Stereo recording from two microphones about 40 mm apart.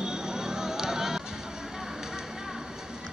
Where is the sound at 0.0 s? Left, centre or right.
Centre.